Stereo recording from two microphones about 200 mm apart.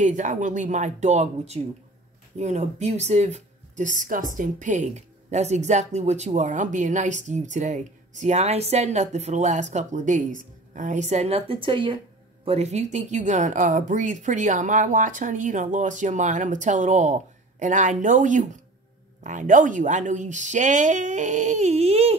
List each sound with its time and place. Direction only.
0.0 s a woman's voice: 40° right (ahead or behind)